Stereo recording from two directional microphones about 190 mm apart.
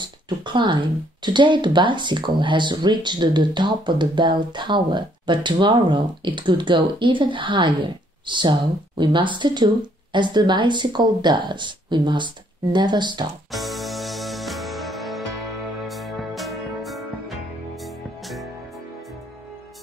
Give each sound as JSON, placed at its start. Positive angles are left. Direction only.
{"t": 0.0, "sound": "speech", "side_deg": -25}
{"t": 13.5, "sound": "music", "side_deg": 0}